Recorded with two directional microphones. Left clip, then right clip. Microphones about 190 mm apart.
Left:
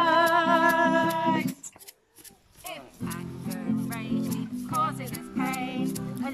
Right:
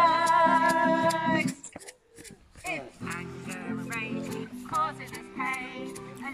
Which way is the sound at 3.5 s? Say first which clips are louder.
Left 2 dB; 30° left (ahead or behind).